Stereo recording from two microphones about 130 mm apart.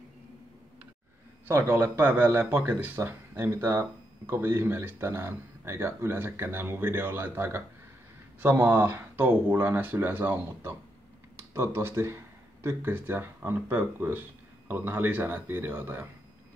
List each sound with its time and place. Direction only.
1.5 s speech: 20° right (ahead or behind)